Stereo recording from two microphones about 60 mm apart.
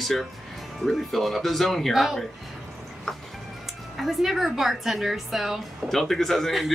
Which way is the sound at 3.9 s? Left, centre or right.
Centre.